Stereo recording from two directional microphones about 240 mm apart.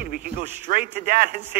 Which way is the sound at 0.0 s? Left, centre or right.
Right.